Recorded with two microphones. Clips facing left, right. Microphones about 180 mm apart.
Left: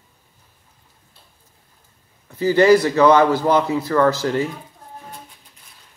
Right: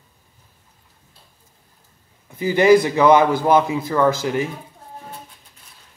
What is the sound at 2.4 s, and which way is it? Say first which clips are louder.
A man's voice: even; 15° right (ahead or behind).